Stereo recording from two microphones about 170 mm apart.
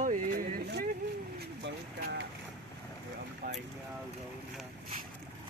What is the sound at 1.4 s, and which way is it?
Speech, 80° right.